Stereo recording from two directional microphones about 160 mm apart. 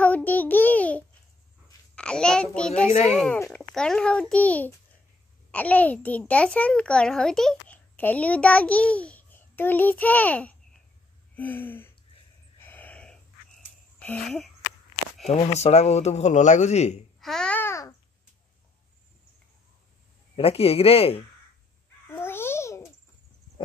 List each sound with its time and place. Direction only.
0.0 s child singing: 10° left (ahead or behind)
2.0 s a sound: 5° left (ahead or behind)
3.1 s a child's voice: centre (ahead or behind)
12.5 s a sound: 10° left (ahead or behind)
13.9 s speech: 5° left (ahead or behind)
15.2 s speech: 40° left (ahead or behind)
17.2 s babbling: 5° left (ahead or behind)
20.3 s speech: 40° left (ahead or behind)
22.2 s babbling: 15° left (ahead or behind)